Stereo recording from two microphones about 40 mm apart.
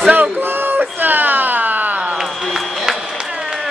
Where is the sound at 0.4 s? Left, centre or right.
Right.